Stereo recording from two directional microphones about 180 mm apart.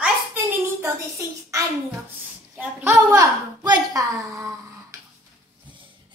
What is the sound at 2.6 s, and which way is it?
A child's voice, 15° right (ahead or behind).